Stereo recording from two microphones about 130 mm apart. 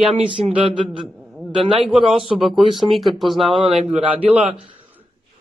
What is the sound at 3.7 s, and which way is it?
Speech, 10° right (ahead or behind).